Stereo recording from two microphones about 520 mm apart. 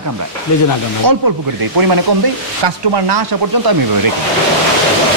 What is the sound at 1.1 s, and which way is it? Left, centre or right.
Speech, right.